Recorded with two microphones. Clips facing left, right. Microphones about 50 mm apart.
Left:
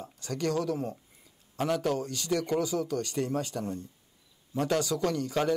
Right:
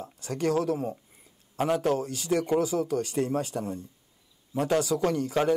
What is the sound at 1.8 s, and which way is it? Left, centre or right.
A man's voice, right.